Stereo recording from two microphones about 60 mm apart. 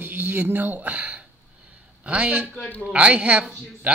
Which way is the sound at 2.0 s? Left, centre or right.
Right.